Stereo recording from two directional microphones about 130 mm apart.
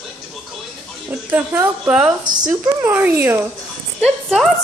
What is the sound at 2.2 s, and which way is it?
Speech, 30° right (ahead or behind).